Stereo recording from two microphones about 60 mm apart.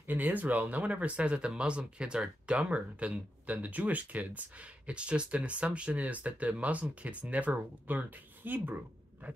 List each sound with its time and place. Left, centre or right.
0.0 s speech: right